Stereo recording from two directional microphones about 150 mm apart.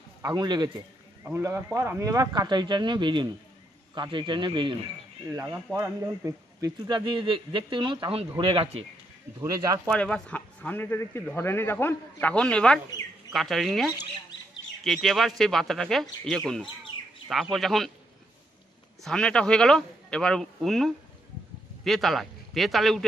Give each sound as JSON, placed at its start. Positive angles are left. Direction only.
{"t": 0.2, "sound": "speech", "side_deg": -30}
{"t": 1.2, "sound": "speech", "side_deg": -15}
{"t": 5.2, "sound": "speech", "side_deg": -20}
{"t": 9.4, "sound": "speech", "side_deg": -25}
{"t": 9.8, "sound": "a man's voice", "side_deg": 5}
{"t": 19.0, "sound": "a man's voice", "side_deg": 5}